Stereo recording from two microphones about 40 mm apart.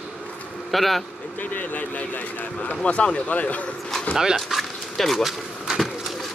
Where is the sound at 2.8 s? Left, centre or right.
Left.